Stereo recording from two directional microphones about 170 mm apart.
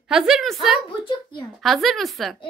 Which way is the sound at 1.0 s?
25° left (ahead or behind).